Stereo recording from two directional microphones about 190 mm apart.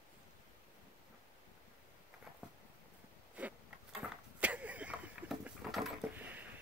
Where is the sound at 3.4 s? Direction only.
5° right (ahead or behind).